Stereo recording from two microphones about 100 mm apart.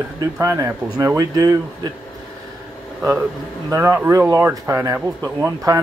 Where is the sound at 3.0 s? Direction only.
20° right (ahead or behind).